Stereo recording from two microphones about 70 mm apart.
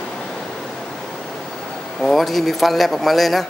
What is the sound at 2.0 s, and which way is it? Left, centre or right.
Speech, centre.